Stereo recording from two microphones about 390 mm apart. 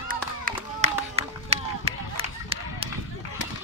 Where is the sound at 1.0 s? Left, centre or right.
Centre.